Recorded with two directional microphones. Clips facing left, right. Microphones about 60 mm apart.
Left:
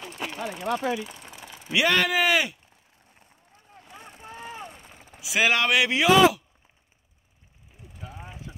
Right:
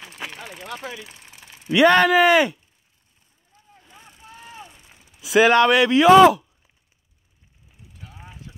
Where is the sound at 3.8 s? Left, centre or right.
Left.